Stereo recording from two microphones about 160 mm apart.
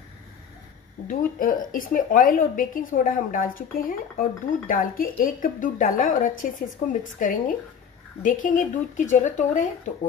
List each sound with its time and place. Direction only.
1.0 s a woman's voice: 60° left (ahead or behind)